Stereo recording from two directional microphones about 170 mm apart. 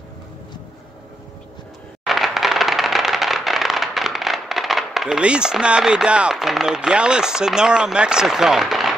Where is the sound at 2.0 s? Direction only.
Centre (ahead or behind).